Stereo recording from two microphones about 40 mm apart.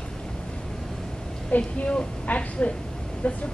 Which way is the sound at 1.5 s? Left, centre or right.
Left.